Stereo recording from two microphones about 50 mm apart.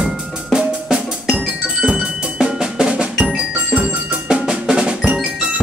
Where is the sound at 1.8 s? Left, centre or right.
Centre.